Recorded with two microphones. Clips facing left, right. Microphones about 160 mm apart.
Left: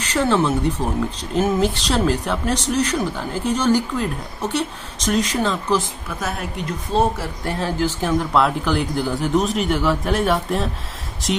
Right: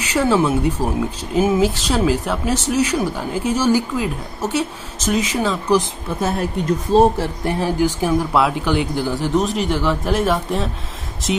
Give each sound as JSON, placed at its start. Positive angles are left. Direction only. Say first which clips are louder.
{"t": 0.0, "sound": "speech", "louder": "right 2 dB", "side_deg": -10}
{"t": 5.8, "sound": "a woman's voice", "louder": "right 5 dB", "side_deg": -30}
{"t": 7.4, "sound": "speech", "louder": "right 3 dB", "side_deg": -15}